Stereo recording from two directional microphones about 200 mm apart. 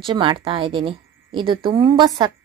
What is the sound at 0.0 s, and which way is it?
Speech, 25° right (ahead or behind).